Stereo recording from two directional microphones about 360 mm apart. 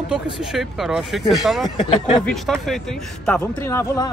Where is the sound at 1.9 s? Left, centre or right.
Centre.